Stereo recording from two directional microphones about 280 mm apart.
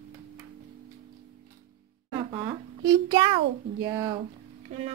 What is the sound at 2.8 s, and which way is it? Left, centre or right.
A child's voice, centre.